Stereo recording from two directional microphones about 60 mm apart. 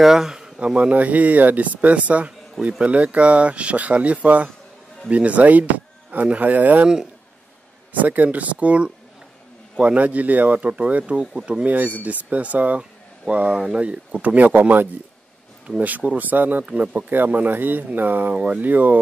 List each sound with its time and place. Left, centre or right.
0.0 s speech: centre; by 6.9 s right
7.9 s speech: right